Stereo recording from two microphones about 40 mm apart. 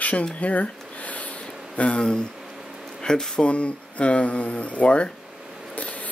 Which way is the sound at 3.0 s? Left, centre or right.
Centre.